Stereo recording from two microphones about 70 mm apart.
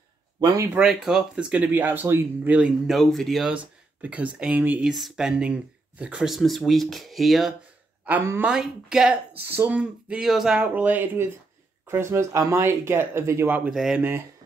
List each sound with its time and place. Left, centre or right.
0.4 s speech: right
0.7 s speech: centre
1.7 s speech: right
2.9 s speech: centre
3.5 s speech: right
4.8 s speech: centre
6.3 s speech: centre
9.5 s speech: right
10.2 s speech: centre
10.6 s speech: right
11.9 s speech: right
13.7 s speech: centre